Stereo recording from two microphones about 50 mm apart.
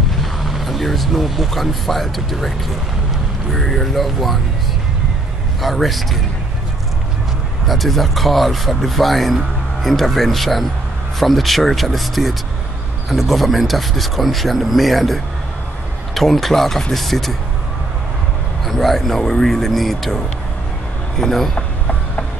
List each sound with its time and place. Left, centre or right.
0.2 s speech: centre
3.5 s speech: centre
5.6 s speech: centre
7.6 s speech: centre
16.2 s speech: centre
18.7 s speech: centre
21.5 s a sound: left